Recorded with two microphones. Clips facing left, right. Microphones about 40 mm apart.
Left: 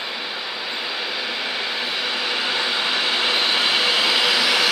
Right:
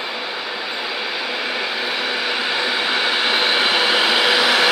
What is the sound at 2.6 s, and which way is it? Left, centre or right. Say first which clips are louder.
Vehicle: right 2 dB; centre.